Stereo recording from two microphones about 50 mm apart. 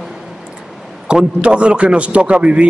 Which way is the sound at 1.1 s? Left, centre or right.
Right.